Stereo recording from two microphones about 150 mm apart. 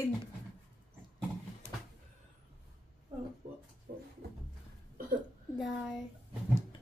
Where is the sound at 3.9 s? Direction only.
80° right.